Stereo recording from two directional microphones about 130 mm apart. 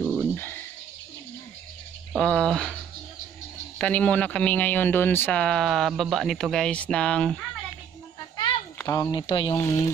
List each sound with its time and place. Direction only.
0.0 s a sound: 10° left (ahead or behind)
2.1 s speech: 5° left (ahead or behind)
8.7 s speech: 25° left (ahead or behind)
9.2 s speech: 40° left (ahead or behind)
9.6 s speech: 25° left (ahead or behind)